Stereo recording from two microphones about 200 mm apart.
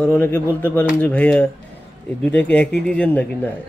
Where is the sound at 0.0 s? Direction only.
10° left (ahead or behind).